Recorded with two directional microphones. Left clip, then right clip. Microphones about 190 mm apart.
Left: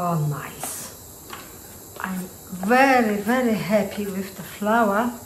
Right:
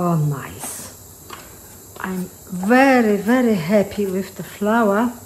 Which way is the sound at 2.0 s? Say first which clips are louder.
Right 3 dB; 45° right (ahead or behind).